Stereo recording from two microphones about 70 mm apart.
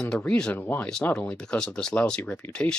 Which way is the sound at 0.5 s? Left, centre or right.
Left.